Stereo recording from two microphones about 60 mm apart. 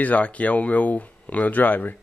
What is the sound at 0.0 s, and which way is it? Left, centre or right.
Speech, left.